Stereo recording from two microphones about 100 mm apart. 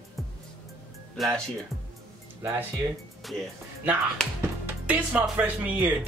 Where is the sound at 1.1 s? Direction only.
Centre (ahead or behind).